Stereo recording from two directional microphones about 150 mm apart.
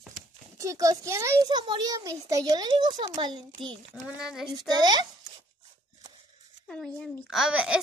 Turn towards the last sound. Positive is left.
turn(degrees=-5)  # may be behind; listen again after turning